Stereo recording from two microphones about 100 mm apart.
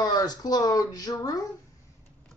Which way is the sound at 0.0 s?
40° left (ahead or behind).